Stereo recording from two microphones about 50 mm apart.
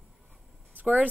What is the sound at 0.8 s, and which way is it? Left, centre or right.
Speech, right.